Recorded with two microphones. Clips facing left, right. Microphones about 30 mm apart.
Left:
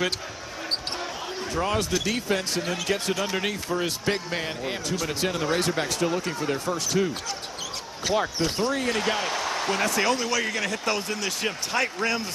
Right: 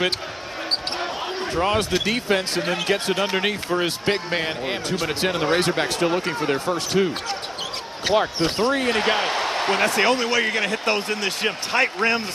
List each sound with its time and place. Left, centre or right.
1.5 s speech: right